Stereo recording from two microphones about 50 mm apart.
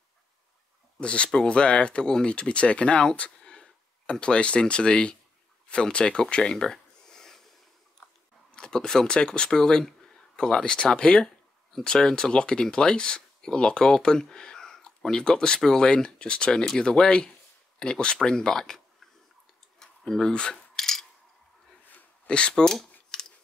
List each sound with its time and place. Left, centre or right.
0.9 s speech: left
8.5 s speech: centre
19.8 s cutlery: centre
21.9 s scissors: left